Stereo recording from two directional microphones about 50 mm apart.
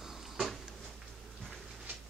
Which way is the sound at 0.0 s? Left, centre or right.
Centre.